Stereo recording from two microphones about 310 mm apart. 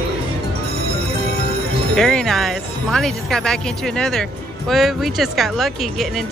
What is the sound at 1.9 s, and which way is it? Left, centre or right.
Speech, centre.